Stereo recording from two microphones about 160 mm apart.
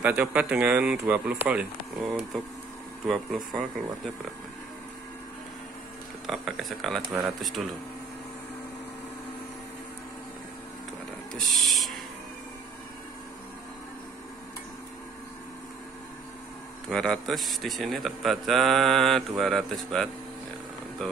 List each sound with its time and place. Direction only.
0.0 s a man's voice: 10° right (ahead or behind)
6.2 s a man's voice: centre (ahead or behind)
11.3 s a sound: centre (ahead or behind)
16.9 s a man's voice: 5° left (ahead or behind)